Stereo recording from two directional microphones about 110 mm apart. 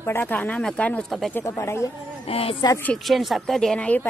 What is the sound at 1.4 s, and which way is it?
Speech, 25° left (ahead or behind).